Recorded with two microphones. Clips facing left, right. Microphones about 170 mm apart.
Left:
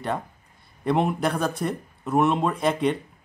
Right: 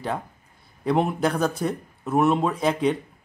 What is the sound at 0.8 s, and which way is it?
Speech, centre (ahead or behind).